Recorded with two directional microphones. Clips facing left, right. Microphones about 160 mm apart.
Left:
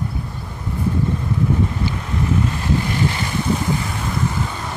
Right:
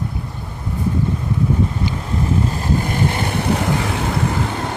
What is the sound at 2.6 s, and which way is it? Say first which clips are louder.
Vehicle: right 1 dB; 50° right (ahead or behind).